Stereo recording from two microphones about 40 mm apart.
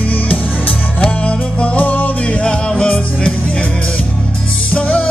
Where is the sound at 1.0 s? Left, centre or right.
Left.